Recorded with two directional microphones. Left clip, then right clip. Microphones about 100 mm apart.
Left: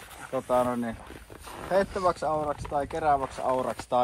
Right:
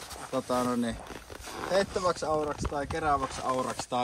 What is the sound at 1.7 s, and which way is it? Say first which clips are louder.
Speech: left 3 dB; 40° left (ahead or behind).